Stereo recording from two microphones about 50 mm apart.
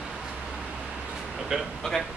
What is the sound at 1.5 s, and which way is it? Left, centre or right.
Speech, centre.